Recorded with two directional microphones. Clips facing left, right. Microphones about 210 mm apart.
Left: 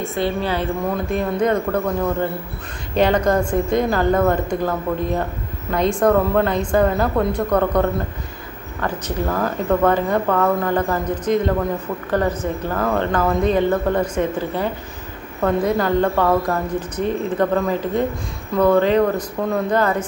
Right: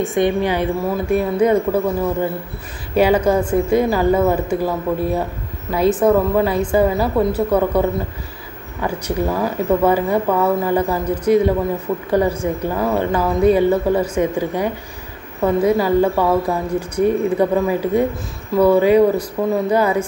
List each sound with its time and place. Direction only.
0.0 s speech: 15° right (ahead or behind)